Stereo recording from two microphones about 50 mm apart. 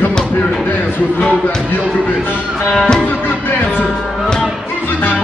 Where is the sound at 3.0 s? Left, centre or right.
Left.